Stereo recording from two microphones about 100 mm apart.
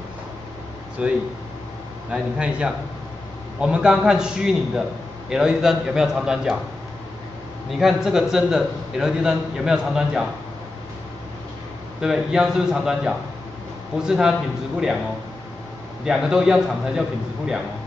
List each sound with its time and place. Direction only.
1.0 s a man's voice: 10° right (ahead or behind)
7.7 s a man's voice: 5° right (ahead or behind)
12.0 s a man's voice: 5° right (ahead or behind)
16.0 s a man's voice: 5° right (ahead or behind)